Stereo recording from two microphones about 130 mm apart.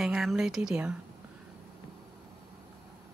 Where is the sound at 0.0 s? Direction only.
5° right (ahead or behind).